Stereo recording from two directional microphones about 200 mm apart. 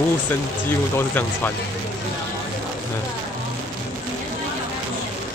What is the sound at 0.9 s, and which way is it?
Speech, 10° left (ahead or behind).